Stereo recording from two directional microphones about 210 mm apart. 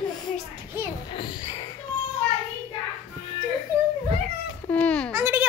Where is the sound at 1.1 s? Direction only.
20° left (ahead or behind).